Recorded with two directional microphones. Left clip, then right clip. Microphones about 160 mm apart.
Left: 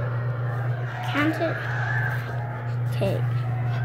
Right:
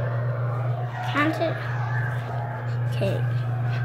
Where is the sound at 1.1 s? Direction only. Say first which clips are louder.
Right 1 dB; 10° right (ahead or behind).